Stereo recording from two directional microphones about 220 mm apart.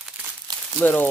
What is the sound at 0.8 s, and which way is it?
Speech, 10° left (ahead or behind).